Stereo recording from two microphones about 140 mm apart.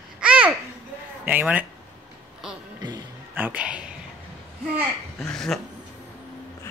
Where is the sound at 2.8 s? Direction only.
30° right (ahead or behind).